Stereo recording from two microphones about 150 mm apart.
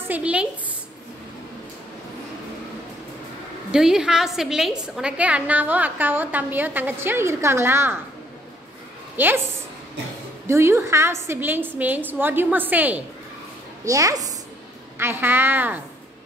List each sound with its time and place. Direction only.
0.1 s a woman's voice: 10° right (ahead or behind)
3.7 s a woman's voice: 5° right (ahead or behind)
9.1 s a woman's voice: 15° right (ahead or behind)
10.4 s a woman's voice: 15° right (ahead or behind)
13.8 s a woman's voice: 20° right (ahead or behind)